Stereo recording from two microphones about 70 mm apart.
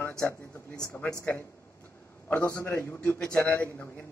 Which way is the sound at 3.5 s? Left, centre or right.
Left.